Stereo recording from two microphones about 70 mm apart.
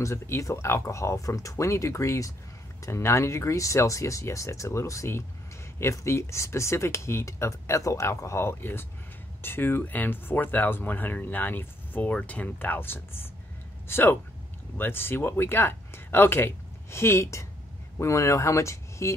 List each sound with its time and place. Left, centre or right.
0.0 s speech: left